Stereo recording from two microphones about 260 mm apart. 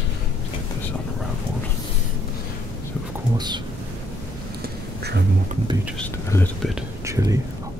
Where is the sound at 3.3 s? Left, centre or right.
Centre.